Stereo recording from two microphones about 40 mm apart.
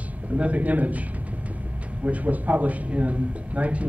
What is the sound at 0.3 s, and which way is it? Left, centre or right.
Speech, right.